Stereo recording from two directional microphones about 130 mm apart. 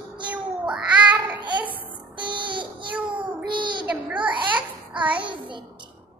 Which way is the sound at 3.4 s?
40° right (ahead or behind).